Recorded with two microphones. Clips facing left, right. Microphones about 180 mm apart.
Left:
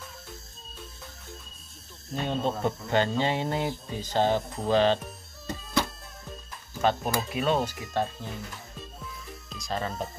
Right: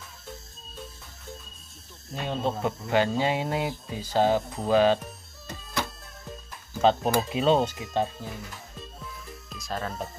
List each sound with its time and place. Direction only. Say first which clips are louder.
2.1 s speech: even; 5° right (ahead or behind)
6.8 s speech: right 4 dB; 25° right (ahead or behind)
9.0 s music: even; centre (ahead or behind)